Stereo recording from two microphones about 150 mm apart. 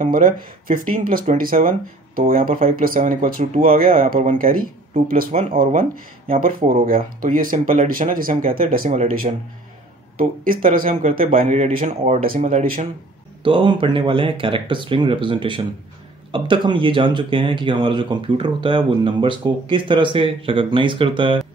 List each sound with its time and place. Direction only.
0.0 s speech: 65° right (ahead or behind)
11.4 s speech: 45° right (ahead or behind)
13.4 s speech: 35° right (ahead or behind)